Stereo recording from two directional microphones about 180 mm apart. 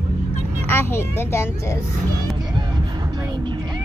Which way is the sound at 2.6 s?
25° right (ahead or behind).